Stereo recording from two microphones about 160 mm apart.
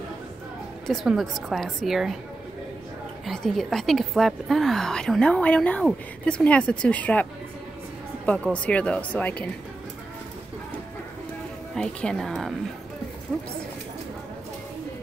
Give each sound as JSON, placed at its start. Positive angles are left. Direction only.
{"t": 0.8, "sound": "a woman's voice", "side_deg": 0}
{"t": 3.3, "sound": "a woman's voice", "side_deg": 0}
{"t": 8.3, "sound": "speech", "side_deg": 10}
{"t": 11.7, "sound": "a woman's voice", "side_deg": 5}